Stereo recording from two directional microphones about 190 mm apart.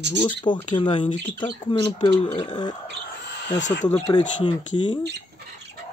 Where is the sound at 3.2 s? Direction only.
70° left (ahead or behind).